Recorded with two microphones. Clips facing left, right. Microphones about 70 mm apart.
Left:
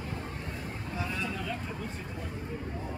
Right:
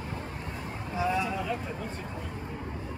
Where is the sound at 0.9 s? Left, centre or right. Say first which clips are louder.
Right 7 dB; centre.